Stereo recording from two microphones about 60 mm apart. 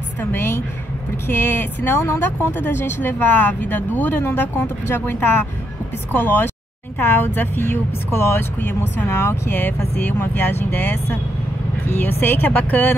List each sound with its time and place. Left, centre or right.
0.2 s speech: left
8.5 s speech: left
11.9 s speech: left